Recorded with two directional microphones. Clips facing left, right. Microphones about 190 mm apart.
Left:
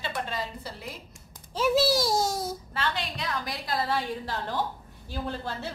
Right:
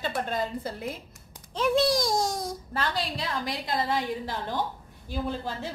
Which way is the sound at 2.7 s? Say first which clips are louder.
Right 3 dB; 35° right (ahead or behind).